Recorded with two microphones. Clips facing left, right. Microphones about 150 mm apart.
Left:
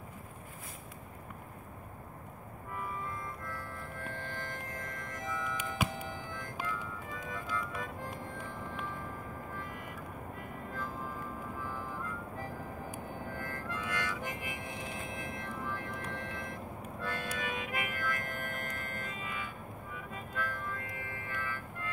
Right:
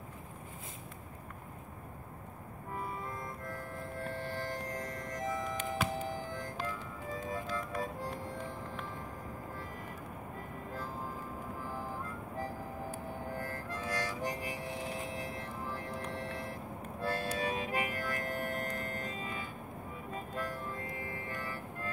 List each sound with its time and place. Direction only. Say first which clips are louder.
2.7 s music: even; 35° right (ahead or behind)
11.6 s music: right 1 dB; 35° right (ahead or behind)
13.4 s harmonica: even; 35° right (ahead or behind)
16.2 s music: right 1 dB; 35° right (ahead or behind)